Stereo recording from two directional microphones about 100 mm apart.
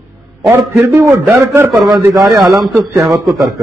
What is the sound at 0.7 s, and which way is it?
A man's voice, 25° right (ahead or behind).